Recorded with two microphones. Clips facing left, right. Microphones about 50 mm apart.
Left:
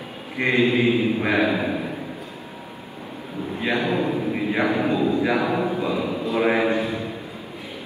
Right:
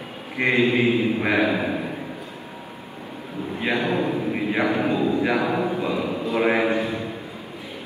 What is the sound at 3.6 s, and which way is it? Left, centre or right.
Speech, right.